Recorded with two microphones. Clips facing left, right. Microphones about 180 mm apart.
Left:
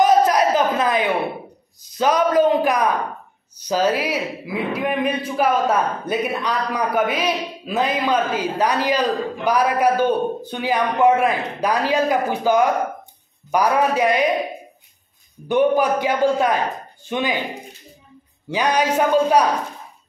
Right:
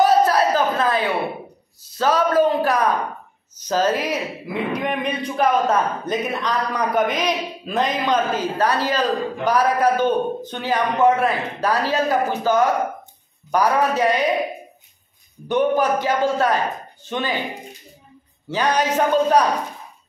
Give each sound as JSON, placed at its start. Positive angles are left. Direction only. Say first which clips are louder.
{"t": 0.0, "sound": "a sound", "louder": "left 1 dB", "side_deg": 15}
{"t": 1.8, "sound": "speech", "louder": "left 1 dB", "side_deg": 15}
{"t": 15.4, "sound": "speech", "louder": "left 2 dB", "side_deg": 10}
{"t": 18.5, "sound": "speech", "louder": "left 1 dB", "side_deg": 10}